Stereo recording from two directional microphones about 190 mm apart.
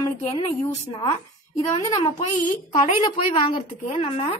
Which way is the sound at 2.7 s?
25° left (ahead or behind).